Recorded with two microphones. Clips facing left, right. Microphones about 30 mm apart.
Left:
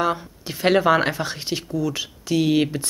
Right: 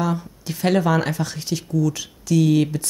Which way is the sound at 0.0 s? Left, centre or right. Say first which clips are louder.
Left 1 dB; left.